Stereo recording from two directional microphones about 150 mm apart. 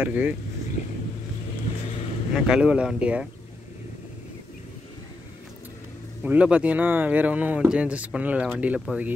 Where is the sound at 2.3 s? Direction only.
5° right (ahead or behind).